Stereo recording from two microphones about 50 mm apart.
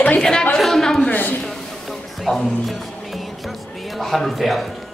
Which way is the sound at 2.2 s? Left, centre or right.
Centre.